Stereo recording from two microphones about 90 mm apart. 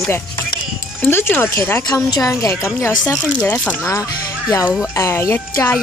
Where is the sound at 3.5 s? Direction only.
20° left (ahead or behind).